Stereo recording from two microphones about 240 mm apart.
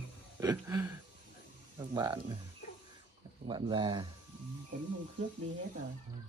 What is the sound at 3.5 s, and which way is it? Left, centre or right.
Speech, centre.